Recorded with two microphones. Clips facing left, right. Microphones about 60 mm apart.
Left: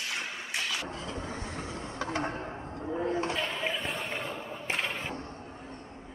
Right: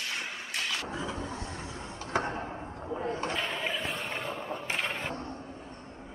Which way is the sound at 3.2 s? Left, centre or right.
Centre.